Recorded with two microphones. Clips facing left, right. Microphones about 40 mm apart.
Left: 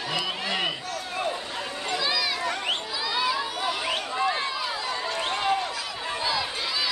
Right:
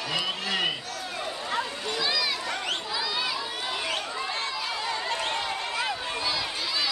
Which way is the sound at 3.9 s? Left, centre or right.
Left.